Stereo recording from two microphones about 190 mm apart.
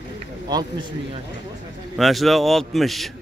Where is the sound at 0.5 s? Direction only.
25° right (ahead or behind).